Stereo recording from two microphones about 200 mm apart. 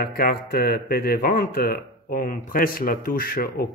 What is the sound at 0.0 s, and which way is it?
Speech, 50° left (ahead or behind).